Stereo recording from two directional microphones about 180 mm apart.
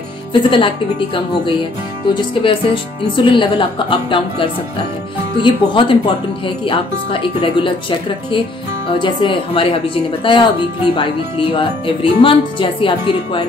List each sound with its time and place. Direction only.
0.3 s speech: 25° left (ahead or behind)
8.8 s speech: 25° left (ahead or behind)